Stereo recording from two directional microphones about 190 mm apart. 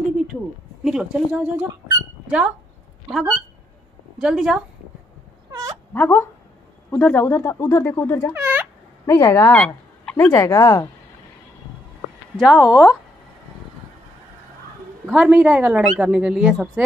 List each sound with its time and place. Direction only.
0.8 s speech: 5° right (ahead or behind)
5.5 s dog: 15° right (ahead or behind)
5.9 s speech: 10° left (ahead or behind)
8.3 s a sound: 10° right (ahead or behind)
9.0 s speech: 15° left (ahead or behind)
12.4 s speech: 5° right (ahead or behind)
15.0 s speech: 5° right (ahead or behind)